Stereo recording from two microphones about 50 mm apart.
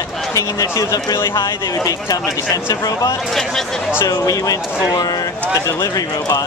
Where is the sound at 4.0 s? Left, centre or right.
Left.